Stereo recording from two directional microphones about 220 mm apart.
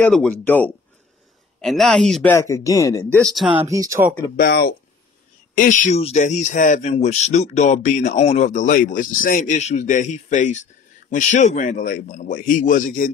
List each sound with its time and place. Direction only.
0.0 s speech: 5° left (ahead or behind)
2.3 s speech: 15° left (ahead or behind)
3.2 s speech: centre (ahead or behind)
3.4 s speech: 20° right (ahead or behind)
4.4 s speech: 45° left (ahead or behind)